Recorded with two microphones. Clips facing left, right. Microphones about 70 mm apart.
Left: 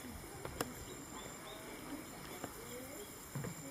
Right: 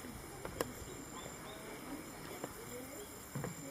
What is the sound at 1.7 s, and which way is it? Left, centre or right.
Vehicle, centre.